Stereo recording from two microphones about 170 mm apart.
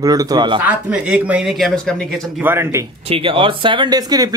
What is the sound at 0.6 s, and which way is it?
Speech, 5° right (ahead or behind).